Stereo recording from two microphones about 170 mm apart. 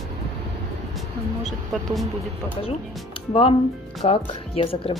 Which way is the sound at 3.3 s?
35° left (ahead or behind).